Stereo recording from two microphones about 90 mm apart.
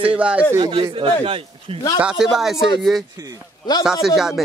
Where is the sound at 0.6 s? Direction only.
60° right (ahead or behind); by 1.8 s 90° right.